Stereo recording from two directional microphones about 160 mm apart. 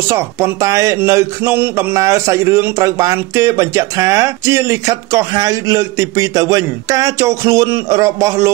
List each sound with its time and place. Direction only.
0.1 s speech: 20° right (ahead or behind)